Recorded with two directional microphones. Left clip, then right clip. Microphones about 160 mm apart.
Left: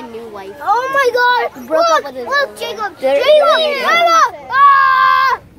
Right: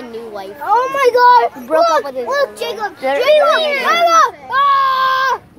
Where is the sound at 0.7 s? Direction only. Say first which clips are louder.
Right 1 dB; 15° left (ahead or behind).